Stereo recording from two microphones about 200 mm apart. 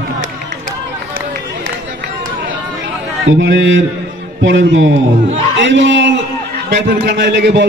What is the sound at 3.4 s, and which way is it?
A man's voice, 70° right (ahead or behind).